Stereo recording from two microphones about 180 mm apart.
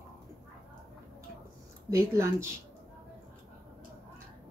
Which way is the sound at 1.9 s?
15° right (ahead or behind).